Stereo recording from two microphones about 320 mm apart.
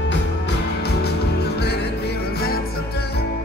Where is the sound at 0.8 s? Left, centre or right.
Left.